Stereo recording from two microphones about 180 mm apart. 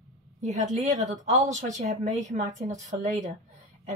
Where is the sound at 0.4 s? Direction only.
40° right (ahead or behind).